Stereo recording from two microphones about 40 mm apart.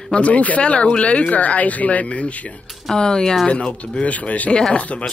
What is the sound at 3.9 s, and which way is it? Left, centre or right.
Speech, left.